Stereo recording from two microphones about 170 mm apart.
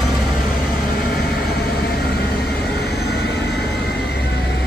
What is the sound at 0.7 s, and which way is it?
Vehicle, 65° left (ahead or behind).